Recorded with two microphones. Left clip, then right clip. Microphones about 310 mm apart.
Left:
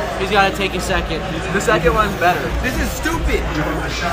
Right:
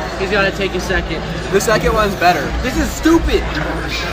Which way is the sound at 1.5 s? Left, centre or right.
Right.